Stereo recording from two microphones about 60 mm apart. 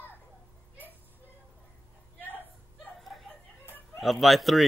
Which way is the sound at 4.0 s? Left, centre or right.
Centre.